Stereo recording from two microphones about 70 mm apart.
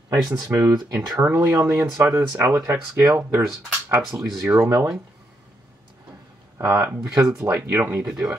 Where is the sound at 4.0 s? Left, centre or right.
Right.